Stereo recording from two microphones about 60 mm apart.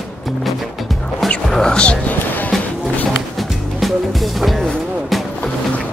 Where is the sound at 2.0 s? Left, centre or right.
Left.